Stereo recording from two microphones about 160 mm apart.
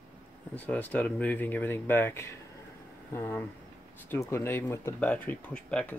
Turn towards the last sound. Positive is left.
turn(degrees=10)  # may be behind; listen again after turning